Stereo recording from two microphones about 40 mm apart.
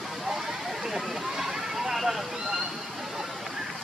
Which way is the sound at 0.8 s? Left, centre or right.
Centre.